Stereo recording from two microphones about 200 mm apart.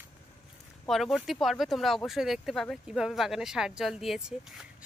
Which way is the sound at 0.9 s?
Centre (ahead or behind).